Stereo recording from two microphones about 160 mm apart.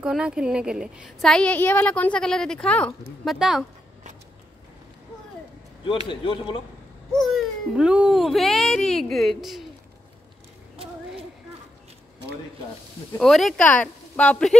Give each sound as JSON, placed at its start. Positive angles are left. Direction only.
{"t": 0.0, "sound": "a woman's voice", "side_deg": -5}
{"t": 3.3, "sound": "a woman's voice", "side_deg": -5}
{"t": 6.0, "sound": "speech", "side_deg": 30}
{"t": 7.2, "sound": "a child's voice", "side_deg": 0}
{"t": 13.2, "sound": "a woman's voice", "side_deg": 0}